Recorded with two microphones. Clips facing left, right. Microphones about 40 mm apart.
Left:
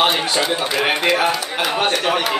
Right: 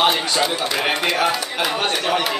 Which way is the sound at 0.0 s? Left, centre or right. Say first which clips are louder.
Left 1 dB; centre.